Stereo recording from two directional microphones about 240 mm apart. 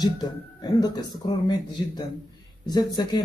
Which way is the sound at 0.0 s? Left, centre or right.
Centre.